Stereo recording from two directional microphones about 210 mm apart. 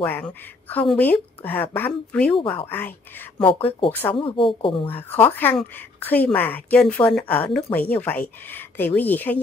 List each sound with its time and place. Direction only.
0.0 s speech: 5° left (ahead or behind)
2.3 s speech: 25° left (ahead or behind)
2.6 s speech: 10° left (ahead or behind)
3.4 s speech: 25° left (ahead or behind)
4.8 s speech: 10° left (ahead or behind)